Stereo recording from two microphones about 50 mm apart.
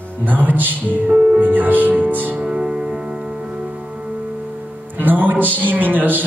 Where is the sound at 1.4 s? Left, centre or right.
Right.